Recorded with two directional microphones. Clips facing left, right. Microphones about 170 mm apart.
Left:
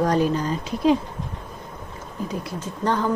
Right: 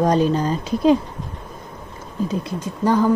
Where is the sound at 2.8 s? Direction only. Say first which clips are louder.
Right 6 dB; 10° right (ahead or behind).